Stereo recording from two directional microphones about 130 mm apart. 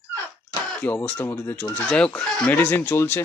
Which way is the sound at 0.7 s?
10° left (ahead or behind).